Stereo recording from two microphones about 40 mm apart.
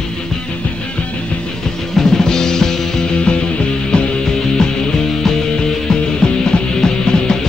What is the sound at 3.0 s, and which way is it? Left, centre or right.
Music, left.